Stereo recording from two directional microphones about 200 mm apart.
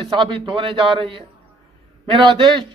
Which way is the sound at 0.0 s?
25° right (ahead or behind).